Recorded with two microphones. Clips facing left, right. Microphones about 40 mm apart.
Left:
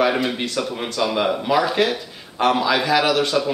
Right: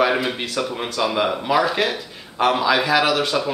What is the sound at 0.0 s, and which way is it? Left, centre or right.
Speech, centre.